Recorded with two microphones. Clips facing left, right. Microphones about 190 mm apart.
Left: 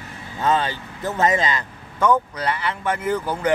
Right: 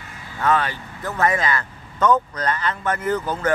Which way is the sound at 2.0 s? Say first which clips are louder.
Even; 10° left (ahead or behind).